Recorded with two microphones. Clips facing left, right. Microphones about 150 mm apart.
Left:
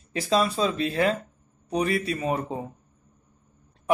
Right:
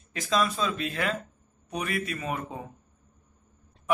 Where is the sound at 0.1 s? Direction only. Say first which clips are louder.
Left 3 dB; 30° left (ahead or behind).